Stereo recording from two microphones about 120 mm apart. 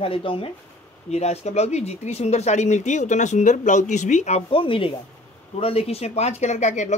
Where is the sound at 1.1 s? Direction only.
65° left (ahead or behind); by 4.4 s 80° left.